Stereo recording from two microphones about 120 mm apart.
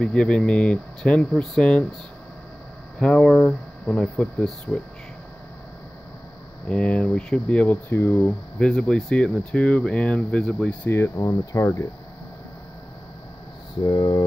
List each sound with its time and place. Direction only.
0.0 s speech: 5° left (ahead or behind)
3.0 s speech: 5° left (ahead or behind)
6.7 s speech: 10° left (ahead or behind)
10.9 s speech: 25° left (ahead or behind)
13.8 s mantra: 35° left (ahead or behind)